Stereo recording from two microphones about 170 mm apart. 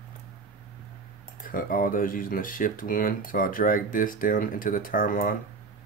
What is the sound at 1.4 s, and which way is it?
Speech, 55° left (ahead or behind).